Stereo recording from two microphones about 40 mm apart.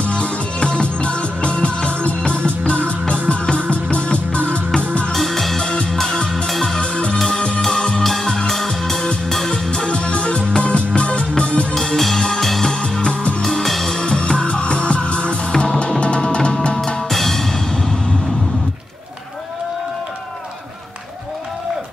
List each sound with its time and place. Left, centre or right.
0.0 s music: left
5.1 s music: centre
6.8 s music: left
9.8 s music: left
11.7 s music: centre
12.8 s music: left
13.4 s music: centre; by 16.5 s left
17.1 s music: centre